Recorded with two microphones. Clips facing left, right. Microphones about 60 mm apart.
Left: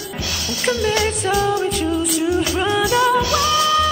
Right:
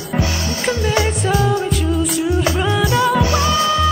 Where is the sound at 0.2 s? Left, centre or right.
Right.